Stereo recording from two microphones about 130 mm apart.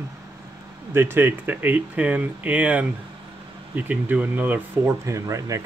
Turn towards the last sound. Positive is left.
turn(degrees=-25)  # may be behind; listen again after turning